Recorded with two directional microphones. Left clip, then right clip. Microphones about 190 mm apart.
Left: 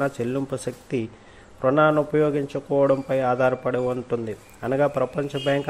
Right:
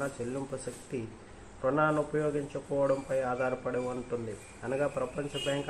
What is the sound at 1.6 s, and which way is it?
Speech, 50° left (ahead or behind).